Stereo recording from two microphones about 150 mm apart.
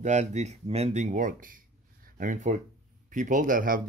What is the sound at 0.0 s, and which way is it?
Speech, 50° right (ahead or behind).